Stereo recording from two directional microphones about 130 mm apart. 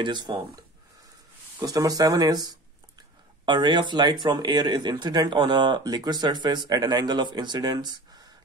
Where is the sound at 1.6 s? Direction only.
25° right (ahead or behind).